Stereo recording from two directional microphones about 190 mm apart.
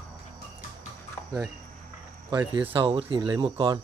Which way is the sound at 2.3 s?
25° right (ahead or behind).